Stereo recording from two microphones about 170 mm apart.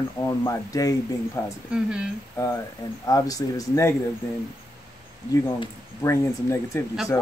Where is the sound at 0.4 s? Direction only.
20° left (ahead or behind).